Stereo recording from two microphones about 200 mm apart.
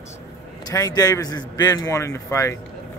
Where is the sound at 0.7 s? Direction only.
15° left (ahead or behind).